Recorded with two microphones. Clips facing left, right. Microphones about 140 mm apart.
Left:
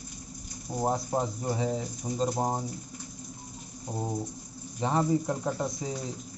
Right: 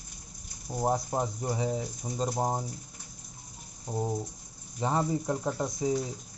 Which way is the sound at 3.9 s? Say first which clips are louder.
Right 2 dB; 15° left (ahead or behind).